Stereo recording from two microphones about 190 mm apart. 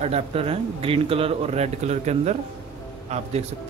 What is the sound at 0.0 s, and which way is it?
Speech, 30° right (ahead or behind).